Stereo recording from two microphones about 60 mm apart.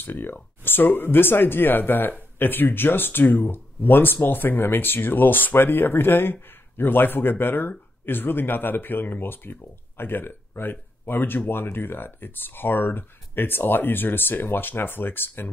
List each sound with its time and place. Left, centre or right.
0.0 s speech: left